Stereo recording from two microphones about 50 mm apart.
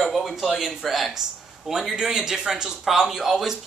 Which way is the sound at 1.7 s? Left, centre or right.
Centre.